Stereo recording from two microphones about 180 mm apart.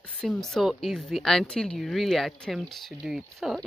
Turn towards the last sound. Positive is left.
turn(degrees=0)  # may be behind; listen again after turning